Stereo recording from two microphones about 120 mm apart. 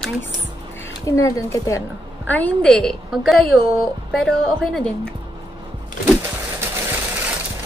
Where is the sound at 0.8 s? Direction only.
25° left (ahead or behind).